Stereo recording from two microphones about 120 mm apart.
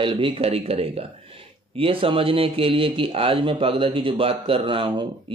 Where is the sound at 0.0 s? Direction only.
45° right (ahead or behind).